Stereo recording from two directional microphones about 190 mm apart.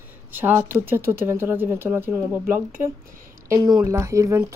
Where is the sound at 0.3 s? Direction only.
10° right (ahead or behind).